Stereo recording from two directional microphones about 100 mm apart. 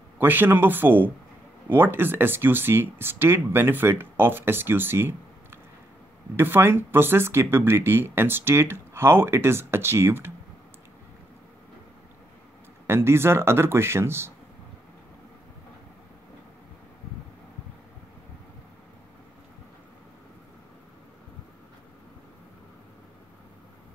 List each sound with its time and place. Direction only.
0.2 s speech: 20° right (ahead or behind)
12.8 s speech: 25° right (ahead or behind)